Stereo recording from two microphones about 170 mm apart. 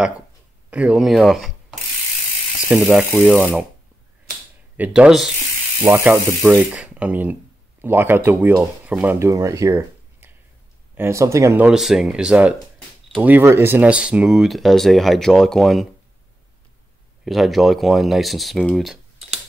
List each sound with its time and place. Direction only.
0.7 s speech: 5° right (ahead or behind)
2.7 s speech: 5° right (ahead or behind)
4.7 s speech: 5° right (ahead or behind)
5.8 s speech: 15° right (ahead or behind)
17.2 s speech: centre (ahead or behind)